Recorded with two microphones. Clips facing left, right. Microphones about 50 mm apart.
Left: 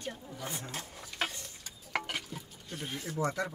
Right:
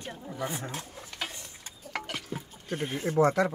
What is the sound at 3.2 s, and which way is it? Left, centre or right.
Speech, right.